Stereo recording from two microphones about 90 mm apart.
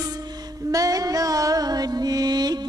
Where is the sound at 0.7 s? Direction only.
40° right (ahead or behind).